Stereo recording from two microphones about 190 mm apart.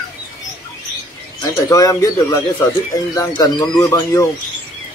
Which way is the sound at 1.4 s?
20° left (ahead or behind).